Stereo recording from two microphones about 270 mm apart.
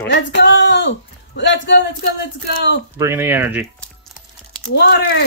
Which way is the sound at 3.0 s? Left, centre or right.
Centre.